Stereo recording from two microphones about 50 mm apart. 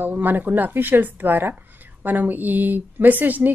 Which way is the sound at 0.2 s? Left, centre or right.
Right.